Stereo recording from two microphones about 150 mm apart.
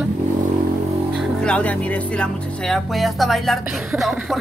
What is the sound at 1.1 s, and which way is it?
Speech, centre (ahead or behind).